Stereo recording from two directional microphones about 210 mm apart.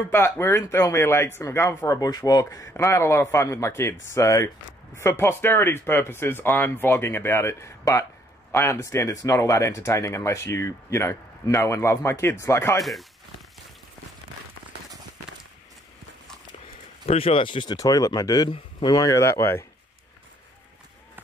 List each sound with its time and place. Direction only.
0.1 s speech: 10° left (ahead or behind)
17.0 s speech: 30° left (ahead or behind); by 19.6 s 10° left (ahead or behind)